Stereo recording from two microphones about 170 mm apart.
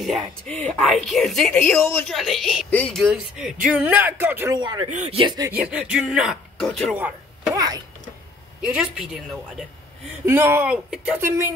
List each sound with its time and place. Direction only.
0.5 s speech: centre (ahead or behind)
2.0 s speech: centre (ahead or behind)
4.6 s speech: 25° right (ahead or behind)
4.9 s speech: 35° right (ahead or behind)
5.5 s speech: 5° right (ahead or behind)
7.5 s speech: 20° right (ahead or behind)
8.6 s speech: 5° right (ahead or behind)
10.2 s speech: 15° right (ahead or behind)